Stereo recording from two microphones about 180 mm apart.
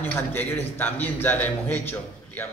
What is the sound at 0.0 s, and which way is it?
A man's voice, 10° left (ahead or behind).